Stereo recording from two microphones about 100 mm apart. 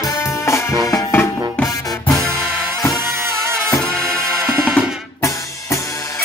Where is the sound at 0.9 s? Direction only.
25° left (ahead or behind).